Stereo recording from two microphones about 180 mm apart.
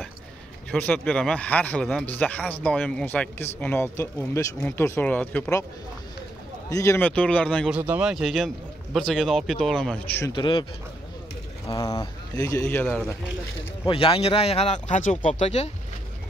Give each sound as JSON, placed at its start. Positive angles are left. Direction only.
{"t": 0.7, "sound": "speech", "side_deg": 5}
{"t": 6.7, "sound": "speech", "side_deg": 15}
{"t": 7.7, "sound": "a man's voice", "side_deg": -5}
{"t": 10.3, "sound": "speech", "side_deg": 25}
{"t": 11.7, "sound": "speech", "side_deg": 20}
{"t": 13.8, "sound": "speech", "side_deg": 30}